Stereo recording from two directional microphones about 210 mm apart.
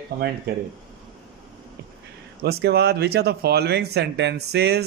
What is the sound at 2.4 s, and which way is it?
Speech, 50° right (ahead or behind).